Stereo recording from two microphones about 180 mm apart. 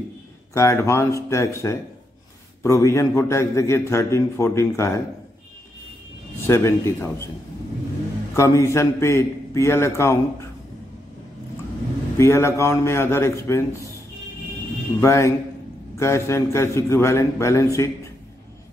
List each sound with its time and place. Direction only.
0.6 s a man's voice: 15° left (ahead or behind)
6.4 s a man's voice: 15° left (ahead or behind)
8.4 s a man's voice: 15° left (ahead or behind)
12.2 s a man's voice: 15° left (ahead or behind)
15.0 s a man's voice: 15° left (ahead or behind)